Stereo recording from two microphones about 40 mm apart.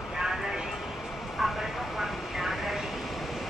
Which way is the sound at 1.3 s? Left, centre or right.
Centre.